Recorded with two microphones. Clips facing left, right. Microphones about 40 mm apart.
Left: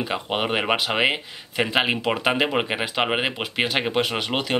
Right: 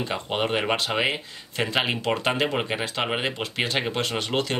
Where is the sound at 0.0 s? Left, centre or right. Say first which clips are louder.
Left 1 dB; centre.